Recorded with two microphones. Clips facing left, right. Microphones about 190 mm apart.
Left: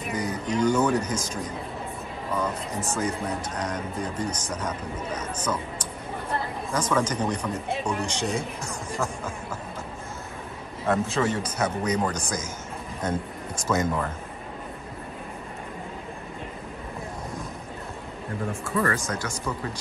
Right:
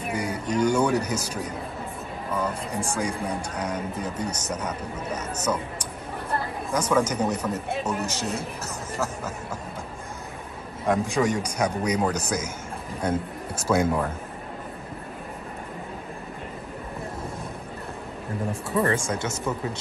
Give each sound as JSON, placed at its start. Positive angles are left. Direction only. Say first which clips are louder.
{"t": 0.1, "sound": "speech", "louder": "right 1 dB", "side_deg": -10}
{"t": 6.7, "sound": "speech", "louder": "right 2 dB", "side_deg": -10}
{"t": 10.9, "sound": "speech", "louder": "right 1 dB", "side_deg": -15}
{"t": 18.8, "sound": "speech", "louder": "right 3 dB", "side_deg": -20}